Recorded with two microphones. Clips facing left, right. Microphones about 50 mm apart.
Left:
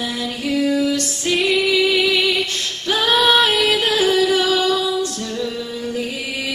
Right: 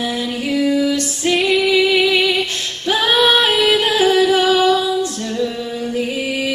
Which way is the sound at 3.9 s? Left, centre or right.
Right.